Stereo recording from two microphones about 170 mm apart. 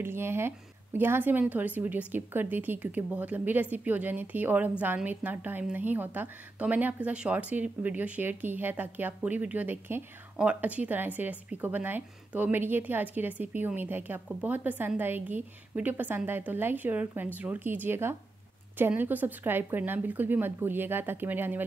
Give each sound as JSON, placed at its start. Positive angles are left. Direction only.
{"t": 0.0, "sound": "a woman's voice", "side_deg": -15}